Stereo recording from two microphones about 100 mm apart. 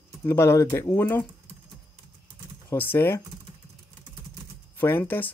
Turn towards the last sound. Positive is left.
turn(degrees=20)  # may be behind; listen again after turning